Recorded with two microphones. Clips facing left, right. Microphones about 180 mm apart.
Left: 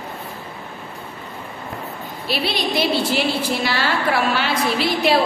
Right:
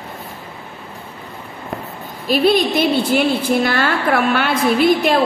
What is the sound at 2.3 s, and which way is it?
A woman's voice, 45° right (ahead or behind).